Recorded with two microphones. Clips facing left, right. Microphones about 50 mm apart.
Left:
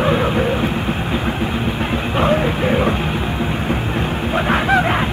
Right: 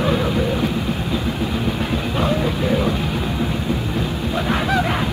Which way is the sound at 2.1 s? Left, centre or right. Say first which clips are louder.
Left 5 dB; left.